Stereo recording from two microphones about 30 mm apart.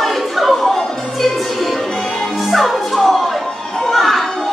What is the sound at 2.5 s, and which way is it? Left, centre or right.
Music, centre.